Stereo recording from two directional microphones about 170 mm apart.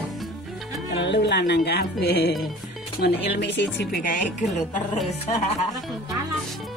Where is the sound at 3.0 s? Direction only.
75° left (ahead or behind); by 4.0 s 90° left.